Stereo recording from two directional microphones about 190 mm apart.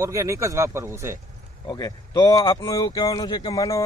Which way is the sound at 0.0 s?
15° right (ahead or behind).